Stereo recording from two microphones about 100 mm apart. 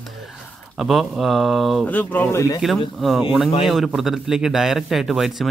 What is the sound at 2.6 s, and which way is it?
Speech, centre (ahead or behind).